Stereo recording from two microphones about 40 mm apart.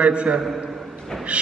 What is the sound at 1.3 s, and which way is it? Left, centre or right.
Music, right.